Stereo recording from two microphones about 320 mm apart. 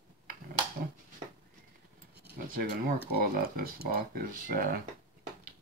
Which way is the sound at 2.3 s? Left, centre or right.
Right.